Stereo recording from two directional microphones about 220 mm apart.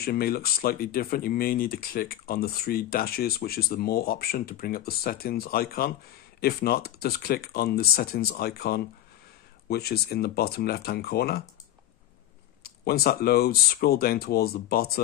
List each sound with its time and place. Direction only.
0.0 s speech: 45° left (ahead or behind)
12.6 s speech: 45° left (ahead or behind)